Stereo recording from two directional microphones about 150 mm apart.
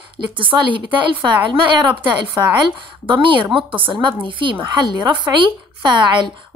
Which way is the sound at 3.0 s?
35° right (ahead or behind).